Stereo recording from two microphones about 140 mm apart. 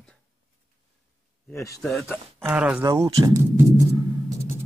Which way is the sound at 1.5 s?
20° left (ahead or behind).